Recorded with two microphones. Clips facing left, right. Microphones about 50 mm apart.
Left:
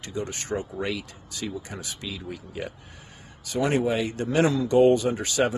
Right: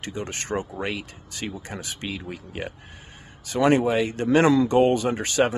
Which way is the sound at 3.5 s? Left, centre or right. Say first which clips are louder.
Right 4 dB; right.